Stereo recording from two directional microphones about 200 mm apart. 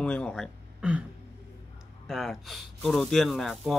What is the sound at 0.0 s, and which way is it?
Speech, 5° left (ahead or behind).